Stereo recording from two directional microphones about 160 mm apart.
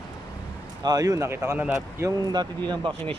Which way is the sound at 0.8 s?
25° right (ahead or behind).